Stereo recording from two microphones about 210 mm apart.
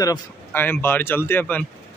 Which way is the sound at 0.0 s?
15° left (ahead or behind).